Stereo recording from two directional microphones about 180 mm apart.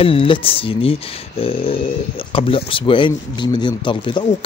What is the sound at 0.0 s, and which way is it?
Speech, 30° left (ahead or behind).